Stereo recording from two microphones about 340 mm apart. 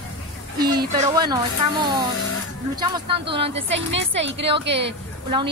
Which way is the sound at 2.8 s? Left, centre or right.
Centre.